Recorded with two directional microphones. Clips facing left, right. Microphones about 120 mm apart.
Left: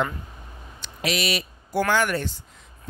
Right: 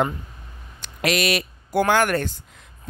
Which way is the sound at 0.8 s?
60° right (ahead or behind).